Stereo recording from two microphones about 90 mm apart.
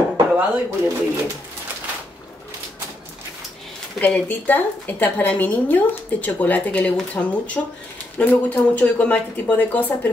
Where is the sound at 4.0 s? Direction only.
20° left (ahead or behind).